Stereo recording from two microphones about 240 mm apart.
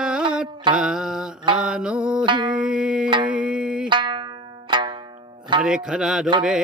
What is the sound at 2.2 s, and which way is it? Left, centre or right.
Music, centre.